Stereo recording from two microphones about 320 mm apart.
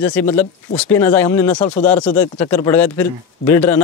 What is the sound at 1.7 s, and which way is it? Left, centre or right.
Speech, left.